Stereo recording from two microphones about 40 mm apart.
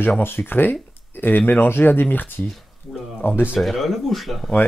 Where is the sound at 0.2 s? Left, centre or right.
Left.